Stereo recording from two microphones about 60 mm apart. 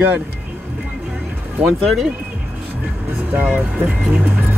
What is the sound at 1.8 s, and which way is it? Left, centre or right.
Speech, centre.